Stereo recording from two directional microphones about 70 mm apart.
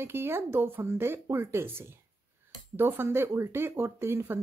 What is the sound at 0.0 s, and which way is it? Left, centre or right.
Speech, right.